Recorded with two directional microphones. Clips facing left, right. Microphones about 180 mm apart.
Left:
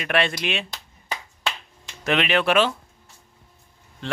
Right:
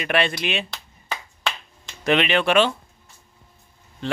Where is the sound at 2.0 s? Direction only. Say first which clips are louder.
Right 2 dB; centre (ahead or behind).